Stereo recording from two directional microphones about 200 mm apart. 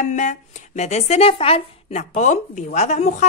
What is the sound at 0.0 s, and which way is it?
A woman's voice, 40° left (ahead or behind).